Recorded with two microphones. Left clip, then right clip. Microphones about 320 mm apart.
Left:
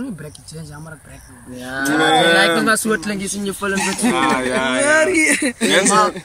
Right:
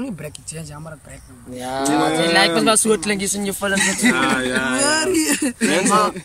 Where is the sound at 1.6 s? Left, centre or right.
Centre.